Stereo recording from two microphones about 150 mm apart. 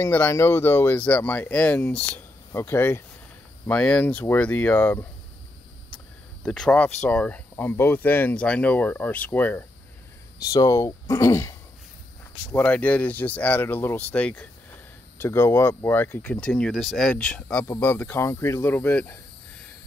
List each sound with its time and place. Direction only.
0.0 s speech: 15° left (ahead or behind)
6.4 s speech: 5° left (ahead or behind)
10.4 s speech: 25° left (ahead or behind)
12.5 s speech: 10° left (ahead or behind)